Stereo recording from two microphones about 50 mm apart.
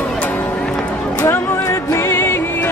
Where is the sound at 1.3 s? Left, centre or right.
Left.